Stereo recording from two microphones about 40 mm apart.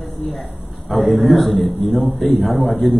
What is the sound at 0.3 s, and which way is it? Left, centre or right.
A man's voice, centre.